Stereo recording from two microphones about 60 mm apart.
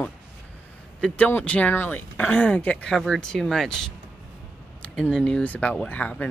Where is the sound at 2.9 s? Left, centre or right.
Centre.